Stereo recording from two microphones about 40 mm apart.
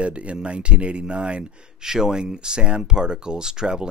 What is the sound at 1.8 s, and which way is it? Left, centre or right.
Speech, centre.